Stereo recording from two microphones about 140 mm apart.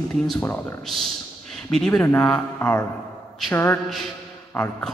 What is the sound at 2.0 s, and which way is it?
Speech, 20° left (ahead or behind).